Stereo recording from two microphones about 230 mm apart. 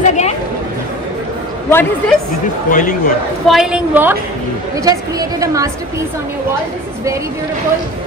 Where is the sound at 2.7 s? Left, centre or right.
Left.